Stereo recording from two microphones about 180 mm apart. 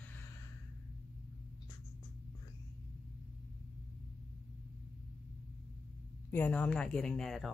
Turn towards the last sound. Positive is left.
turn(degrees=0)  # may be behind; listen again after turning